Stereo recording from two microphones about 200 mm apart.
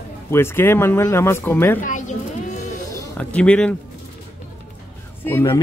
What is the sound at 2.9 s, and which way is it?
Speech, 5° left (ahead or behind).